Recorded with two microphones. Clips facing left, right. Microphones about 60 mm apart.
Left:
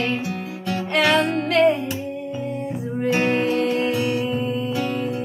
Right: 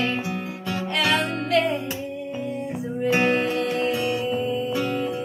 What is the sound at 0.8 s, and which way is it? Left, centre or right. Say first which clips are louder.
Music: left 5 dB; left.